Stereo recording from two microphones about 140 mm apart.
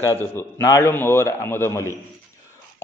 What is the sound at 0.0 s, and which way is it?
A man's voice, 20° left (ahead or behind).